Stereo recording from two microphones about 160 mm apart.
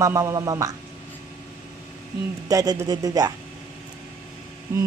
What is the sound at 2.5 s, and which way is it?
Speech, 20° right (ahead or behind).